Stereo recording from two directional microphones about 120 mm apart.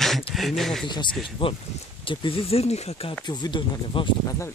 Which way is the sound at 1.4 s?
50° left (ahead or behind).